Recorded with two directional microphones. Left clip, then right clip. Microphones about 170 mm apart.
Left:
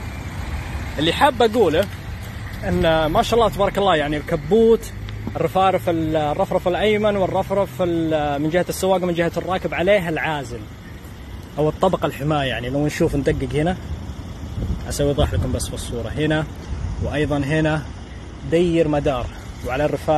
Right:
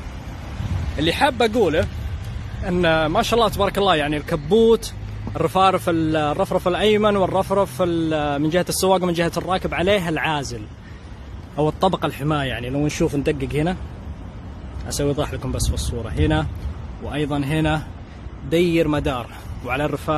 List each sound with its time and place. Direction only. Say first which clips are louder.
0.9 s speech: left 2 dB; 25° right (ahead or behind)
2.8 s speech: left 1 dB; 35° right (ahead or behind)
5.4 s speech: even; 55° right (ahead or behind)
11.5 s speech: left 1 dB; 35° right (ahead or behind)
12.0 s speech: left 2 dB; 20° right (ahead or behind)
15.0 s speech: left 2 dB; 25° right (ahead or behind)